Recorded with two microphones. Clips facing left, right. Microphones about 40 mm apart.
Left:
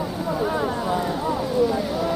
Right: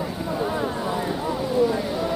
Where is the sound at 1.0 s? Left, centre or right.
Centre.